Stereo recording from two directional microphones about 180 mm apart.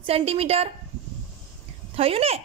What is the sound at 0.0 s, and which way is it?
Speech, 35° right (ahead or behind).